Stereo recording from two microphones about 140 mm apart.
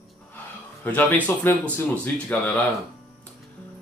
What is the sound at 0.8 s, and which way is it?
Speech, 10° left (ahead or behind).